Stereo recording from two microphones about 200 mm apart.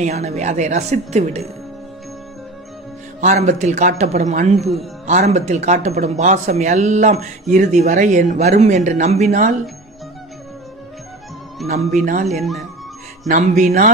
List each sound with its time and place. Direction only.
0.0 s speech: 35° right (ahead or behind)
3.2 s speech: 35° right (ahead or behind)
4.6 s speech: centre (ahead or behind)
5.0 s speech: 35° right (ahead or behind)
11.6 s speech: 35° right (ahead or behind)
12.3 s speech: centre (ahead or behind)
13.3 s speech: 40° right (ahead or behind)